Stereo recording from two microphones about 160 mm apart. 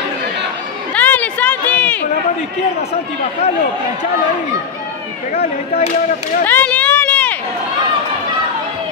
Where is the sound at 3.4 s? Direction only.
40° left (ahead or behind).